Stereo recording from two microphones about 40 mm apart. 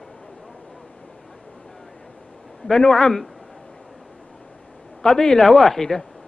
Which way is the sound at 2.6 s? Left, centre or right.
Centre.